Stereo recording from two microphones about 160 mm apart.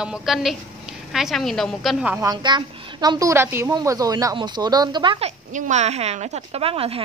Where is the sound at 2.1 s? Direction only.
20° right (ahead or behind).